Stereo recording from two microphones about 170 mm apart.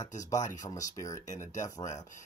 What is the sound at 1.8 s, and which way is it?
Speech, 20° left (ahead or behind).